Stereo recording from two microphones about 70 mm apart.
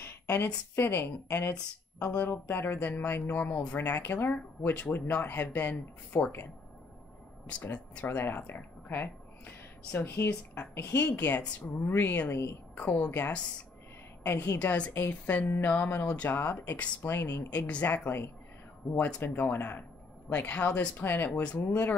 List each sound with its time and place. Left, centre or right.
0.7 s speech: left
1.5 s speech: left
7.6 s speech: left
11.0 s a woman's voice: left
16.7 s speech: centre
17.1 s speech: left
17.6 s speech: left